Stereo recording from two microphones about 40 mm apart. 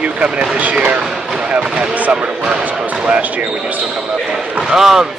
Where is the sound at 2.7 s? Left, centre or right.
Right.